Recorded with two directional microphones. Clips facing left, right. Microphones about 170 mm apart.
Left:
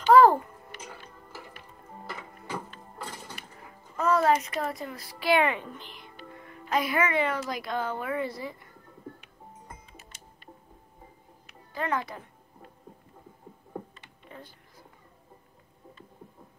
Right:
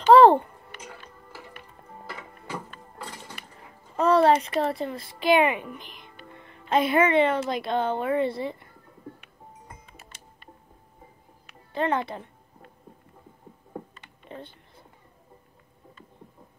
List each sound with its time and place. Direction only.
0.1 s music: 30° right (ahead or behind)
3.9 s a child's voice: 30° right (ahead or behind)
6.3 s music: 25° right (ahead or behind)
7.4 s a child's voice: 25° right (ahead or behind)
10.0 s music: 55° right (ahead or behind)
11.7 s a child's voice: 25° right (ahead or behind)
14.3 s a sound: 25° right (ahead or behind)